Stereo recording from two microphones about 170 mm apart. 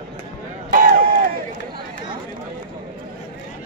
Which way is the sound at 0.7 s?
60° right (ahead or behind).